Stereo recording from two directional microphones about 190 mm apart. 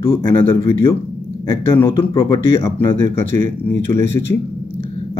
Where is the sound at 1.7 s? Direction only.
15° left (ahead or behind).